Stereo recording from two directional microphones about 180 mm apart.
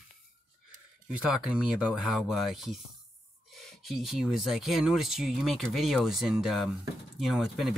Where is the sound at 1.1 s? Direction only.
5° right (ahead or behind).